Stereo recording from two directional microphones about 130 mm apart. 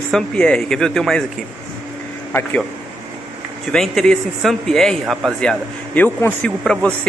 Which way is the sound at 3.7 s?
5° left (ahead or behind).